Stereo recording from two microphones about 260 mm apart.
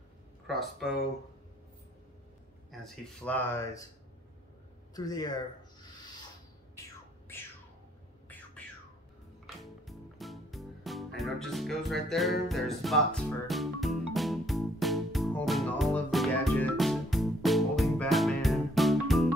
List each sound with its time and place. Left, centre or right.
0.5 s speech: centre
2.7 s speech: centre
4.9 s a sound: centre
9.6 s music: centre